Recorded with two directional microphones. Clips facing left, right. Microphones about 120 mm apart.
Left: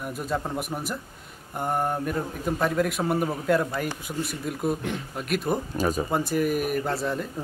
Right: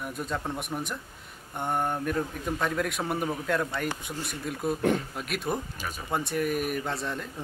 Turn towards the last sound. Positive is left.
turn(degrees=5)  # may be behind; listen again after turning